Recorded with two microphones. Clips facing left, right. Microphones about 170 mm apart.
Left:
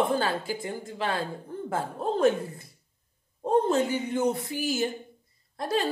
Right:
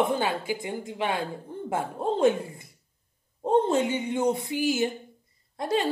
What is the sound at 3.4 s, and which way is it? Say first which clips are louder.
A woman's voice: right 1 dB; 20° right (ahead or behind).